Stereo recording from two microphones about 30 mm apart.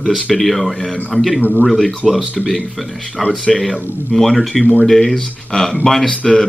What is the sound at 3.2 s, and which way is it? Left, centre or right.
Speech, centre.